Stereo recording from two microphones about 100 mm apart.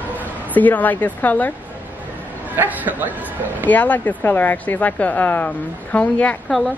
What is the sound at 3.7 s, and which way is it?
Speech, 15° left (ahead or behind).